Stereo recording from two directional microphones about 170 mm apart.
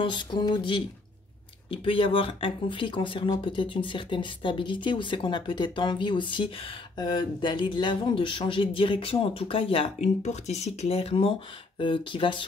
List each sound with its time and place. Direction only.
0.0 s speech: 25° left (ahead or behind)